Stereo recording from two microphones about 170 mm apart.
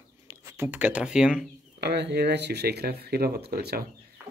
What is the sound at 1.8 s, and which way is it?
Speech, 80° right.